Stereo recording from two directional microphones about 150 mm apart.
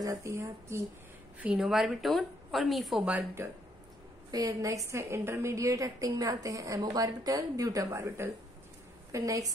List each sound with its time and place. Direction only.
0.0 s a woman's voice: 20° right (ahead or behind)
1.4 s a woman's voice: 5° right (ahead or behind)
4.3 s a woman's voice: 25° right (ahead or behind)